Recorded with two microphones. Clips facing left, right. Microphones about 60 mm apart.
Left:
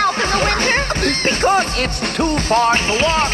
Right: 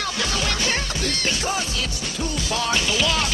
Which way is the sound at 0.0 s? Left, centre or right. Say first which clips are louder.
Left 9 dB; left.